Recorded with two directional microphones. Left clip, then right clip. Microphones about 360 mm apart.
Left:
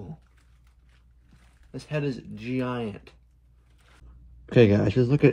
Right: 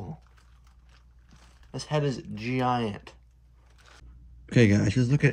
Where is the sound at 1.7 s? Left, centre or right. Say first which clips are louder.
Right 2 dB; centre.